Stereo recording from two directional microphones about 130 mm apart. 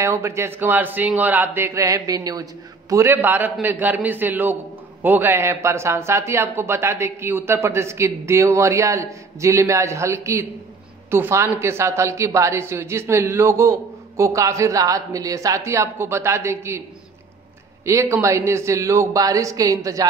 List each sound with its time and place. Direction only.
0.0 s a woman's voice: 20° right (ahead or behind)
17.8 s a woman's voice: 20° right (ahead or behind)